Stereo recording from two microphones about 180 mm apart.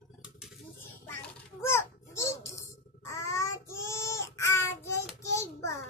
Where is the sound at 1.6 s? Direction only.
15° left (ahead or behind).